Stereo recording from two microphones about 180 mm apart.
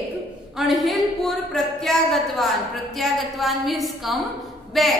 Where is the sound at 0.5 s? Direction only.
Centre (ahead or behind).